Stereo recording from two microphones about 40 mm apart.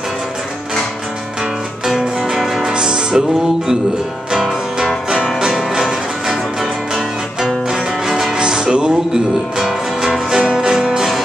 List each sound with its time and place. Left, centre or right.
1.9 s music: centre
2.7 s music: centre
5.1 s music: right
8.4 s music: right
10.3 s music: centre